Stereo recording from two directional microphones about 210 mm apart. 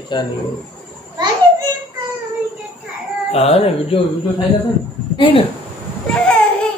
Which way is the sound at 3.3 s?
30° left (ahead or behind).